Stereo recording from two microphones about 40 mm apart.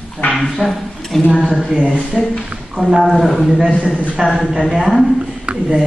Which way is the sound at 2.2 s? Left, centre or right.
Centre.